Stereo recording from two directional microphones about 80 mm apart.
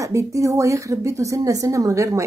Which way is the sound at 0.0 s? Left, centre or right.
Right.